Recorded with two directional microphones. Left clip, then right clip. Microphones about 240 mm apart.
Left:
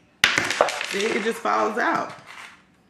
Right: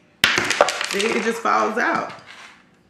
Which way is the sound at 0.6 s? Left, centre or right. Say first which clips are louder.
Right 4 dB; right.